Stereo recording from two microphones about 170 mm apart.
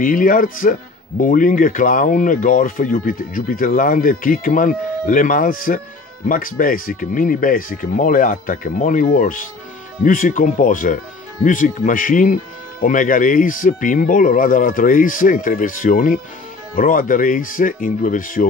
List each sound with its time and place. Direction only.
0.0 s speech: 55° left (ahead or behind)